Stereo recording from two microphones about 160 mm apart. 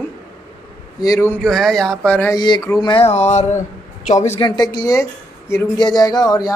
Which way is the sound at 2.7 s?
30° left (ahead or behind).